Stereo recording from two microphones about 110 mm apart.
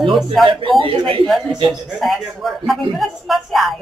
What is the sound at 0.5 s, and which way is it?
Speech, 50° right (ahead or behind).